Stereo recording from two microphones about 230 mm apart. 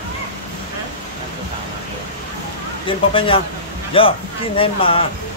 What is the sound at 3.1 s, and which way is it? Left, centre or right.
Speech, left.